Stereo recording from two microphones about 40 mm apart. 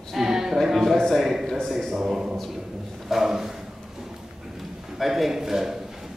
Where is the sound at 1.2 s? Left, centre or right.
Centre.